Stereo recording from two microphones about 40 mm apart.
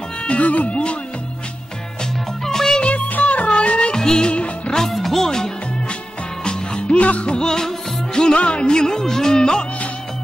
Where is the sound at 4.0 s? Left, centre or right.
Centre.